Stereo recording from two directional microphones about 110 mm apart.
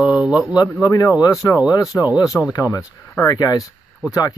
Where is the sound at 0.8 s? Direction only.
35° left (ahead or behind).